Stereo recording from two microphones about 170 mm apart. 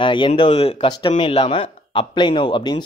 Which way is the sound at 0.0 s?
30° left (ahead or behind).